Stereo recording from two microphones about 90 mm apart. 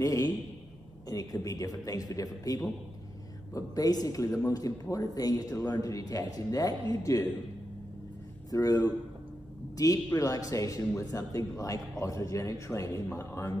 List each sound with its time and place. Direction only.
0.0 s speech: 40° left (ahead or behind)
8.5 s speech: 45° left (ahead or behind)
10.1 s speech: 40° left (ahead or behind)